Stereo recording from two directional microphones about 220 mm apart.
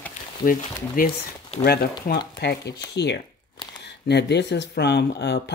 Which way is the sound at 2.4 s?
50° left (ahead or behind).